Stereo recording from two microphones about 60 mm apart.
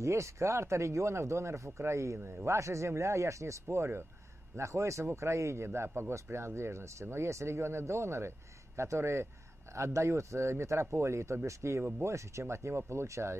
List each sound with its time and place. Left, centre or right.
0.0 s speech: right